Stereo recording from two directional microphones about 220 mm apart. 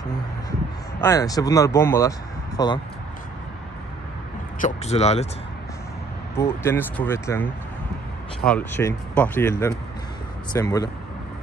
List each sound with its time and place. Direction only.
1.0 s speech: 15° left (ahead or behind)
4.6 s speech: 30° left (ahead or behind)
6.3 s speech: 10° left (ahead or behind)